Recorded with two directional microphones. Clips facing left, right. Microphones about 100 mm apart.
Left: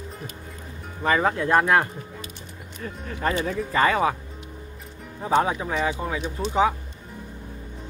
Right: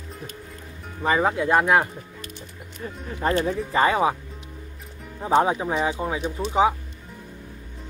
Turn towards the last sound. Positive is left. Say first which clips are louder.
# right 2 dB
turn(degrees=-15)  # may be behind; listen again after turning